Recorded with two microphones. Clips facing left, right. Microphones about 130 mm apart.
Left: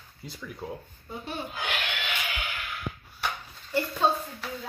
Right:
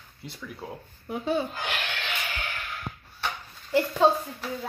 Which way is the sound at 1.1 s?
85° right.